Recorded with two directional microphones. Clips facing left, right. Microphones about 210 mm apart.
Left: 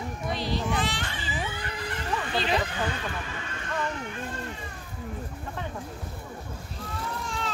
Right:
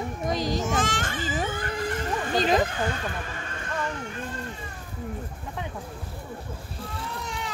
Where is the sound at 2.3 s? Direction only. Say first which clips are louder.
Right 5 dB; 45° right (ahead or behind).